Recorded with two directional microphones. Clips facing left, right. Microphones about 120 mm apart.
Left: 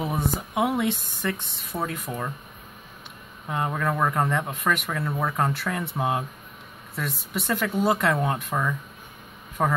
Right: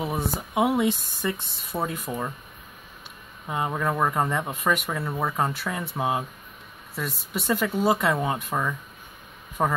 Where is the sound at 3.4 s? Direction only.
10° right (ahead or behind).